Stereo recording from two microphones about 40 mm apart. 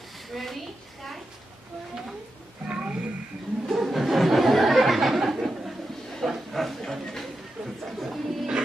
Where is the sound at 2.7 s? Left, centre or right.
Right.